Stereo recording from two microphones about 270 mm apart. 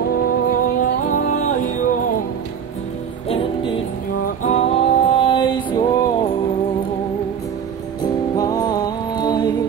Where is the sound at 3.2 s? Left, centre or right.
Left.